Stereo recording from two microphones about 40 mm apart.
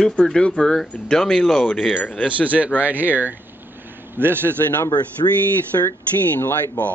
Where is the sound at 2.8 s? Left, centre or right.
Right.